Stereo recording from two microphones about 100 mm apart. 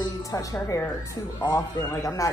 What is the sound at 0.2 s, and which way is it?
A woman's voice, 35° left (ahead or behind).